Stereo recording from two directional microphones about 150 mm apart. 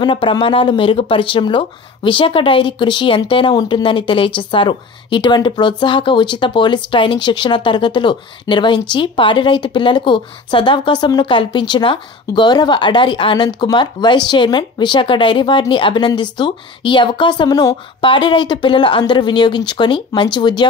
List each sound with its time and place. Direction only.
0.0 s speech: 35° left (ahead or behind)